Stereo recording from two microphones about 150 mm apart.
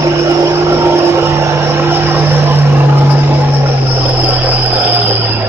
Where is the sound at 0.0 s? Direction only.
15° right (ahead or behind).